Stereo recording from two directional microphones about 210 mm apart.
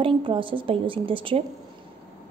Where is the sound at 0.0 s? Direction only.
25° right (ahead or behind).